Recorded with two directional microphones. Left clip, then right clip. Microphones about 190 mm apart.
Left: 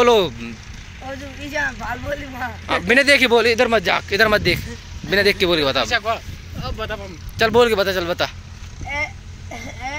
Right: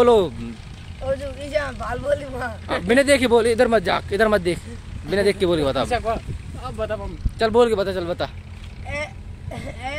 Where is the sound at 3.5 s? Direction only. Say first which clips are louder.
Left 1 dB; 20° right (ahead or behind).